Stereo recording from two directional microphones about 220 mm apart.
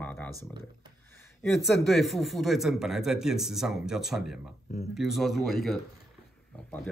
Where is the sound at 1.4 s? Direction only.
Centre (ahead or behind).